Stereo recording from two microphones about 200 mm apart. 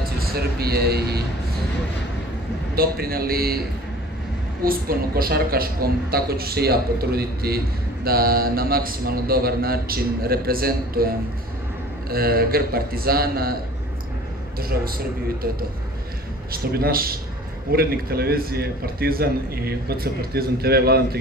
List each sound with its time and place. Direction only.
0.2 s a woman's voice: 50° right (ahead or behind)
2.7 s a woman's voice: 50° right (ahead or behind)
4.6 s a woman's voice: 50° right (ahead or behind)
14.6 s a woman's voice: 50° right (ahead or behind)